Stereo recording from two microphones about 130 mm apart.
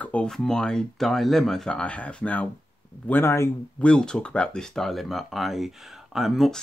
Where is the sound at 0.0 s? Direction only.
10° left (ahead or behind).